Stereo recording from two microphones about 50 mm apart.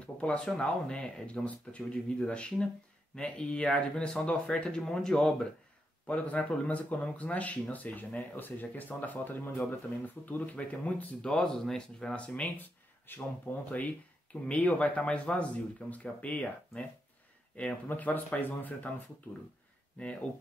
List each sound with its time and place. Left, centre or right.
0.0 s a sound: left
0.5 s speech: centre
4.6 s speech: centre
6.0 s speech: left
11.2 s speech: centre
12.5 s speech: left
17.8 s speech: left
20.0 s speech: left